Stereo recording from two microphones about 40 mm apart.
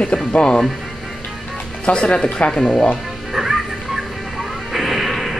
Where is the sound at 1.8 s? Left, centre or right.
Left.